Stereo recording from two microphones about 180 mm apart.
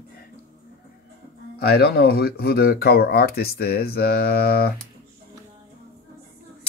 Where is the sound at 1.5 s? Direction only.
60° left (ahead or behind).